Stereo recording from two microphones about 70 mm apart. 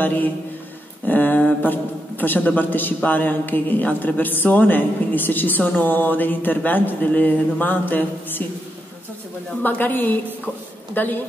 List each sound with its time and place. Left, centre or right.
0.0 s a man's voice: left
9.6 s a man's voice: left